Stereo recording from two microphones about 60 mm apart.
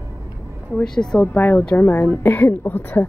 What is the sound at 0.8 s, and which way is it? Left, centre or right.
Speech, centre.